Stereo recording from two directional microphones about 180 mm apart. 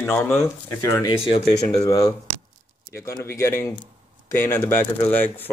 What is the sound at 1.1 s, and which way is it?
Speech, 30° left (ahead or behind).